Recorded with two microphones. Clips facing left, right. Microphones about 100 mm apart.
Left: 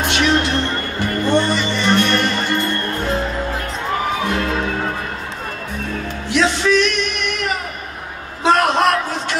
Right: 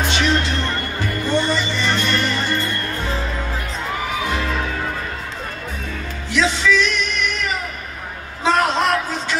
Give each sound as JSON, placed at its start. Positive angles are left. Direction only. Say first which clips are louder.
{"t": 0.0, "sound": "music", "louder": "left 2 dB", "side_deg": 65}
{"t": 4.3, "sound": "music", "louder": "left 3 dB", "side_deg": 55}
{"t": 6.3, "sound": "music", "louder": "left 2 dB", "side_deg": 60}
{"t": 8.5, "sound": "a sound", "louder": "left 3 dB", "side_deg": 60}